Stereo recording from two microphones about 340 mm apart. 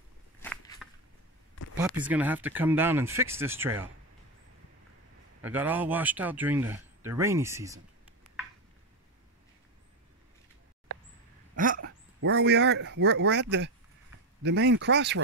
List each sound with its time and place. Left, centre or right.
0.4 s walk: centre
1.8 s speech: centre
5.4 s speech: centre
11.5 s a sound: right
12.2 s speech: right